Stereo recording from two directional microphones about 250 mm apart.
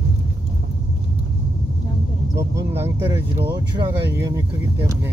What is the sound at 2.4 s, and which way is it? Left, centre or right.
Speech, centre.